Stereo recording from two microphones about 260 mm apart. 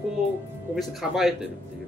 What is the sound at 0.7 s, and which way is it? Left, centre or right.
Speech, centre.